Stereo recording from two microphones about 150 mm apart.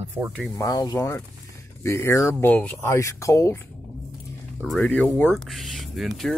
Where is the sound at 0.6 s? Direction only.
25° left (ahead or behind).